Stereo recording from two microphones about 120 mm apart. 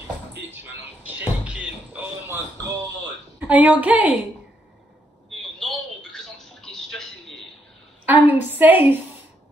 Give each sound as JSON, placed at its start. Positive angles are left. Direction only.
{"t": 1.0, "sound": "music", "side_deg": -10}
{"t": 3.3, "sound": "a woman's voice", "side_deg": -15}
{"t": 5.6, "sound": "a sound", "side_deg": 5}
{"t": 8.0, "sound": "a woman's voice", "side_deg": -15}